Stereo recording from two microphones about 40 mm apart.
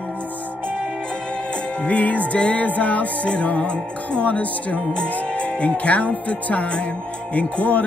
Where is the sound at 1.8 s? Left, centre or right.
Left.